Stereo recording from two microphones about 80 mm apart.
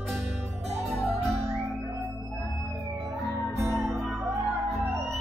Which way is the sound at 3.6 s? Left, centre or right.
Right.